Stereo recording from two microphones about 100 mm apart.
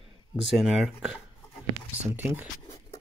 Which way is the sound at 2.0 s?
20° right (ahead or behind).